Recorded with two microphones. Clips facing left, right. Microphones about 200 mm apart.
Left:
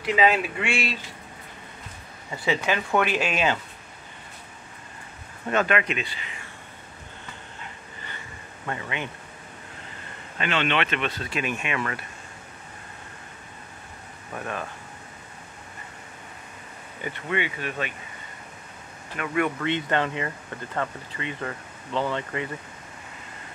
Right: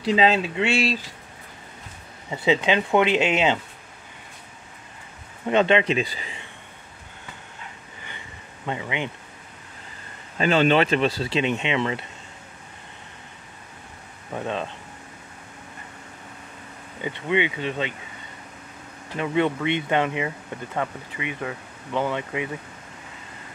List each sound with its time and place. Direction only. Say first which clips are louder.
0.0 s speech: right 2 dB; 30° right (ahead or behind)
2.3 s speech: right 5 dB; 20° right (ahead or behind)
5.5 s speech: right 5 dB; 25° right (ahead or behind)
8.6 s speech: right 3 dB; 15° right (ahead or behind)
10.4 s speech: right 7 dB; 35° right (ahead or behind)
14.3 s speech: right 4 dB; 20° right (ahead or behind)
17.0 s speech: right 5 dB; 20° right (ahead or behind)
19.1 s speech: right 3 dB; 25° right (ahead or behind)